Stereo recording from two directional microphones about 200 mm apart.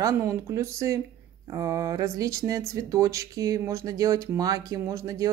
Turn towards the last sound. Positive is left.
turn(degrees=-15)  # may be behind; listen again after turning